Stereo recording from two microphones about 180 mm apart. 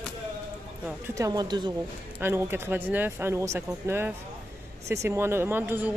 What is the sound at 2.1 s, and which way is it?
Speech, 10° right (ahead or behind).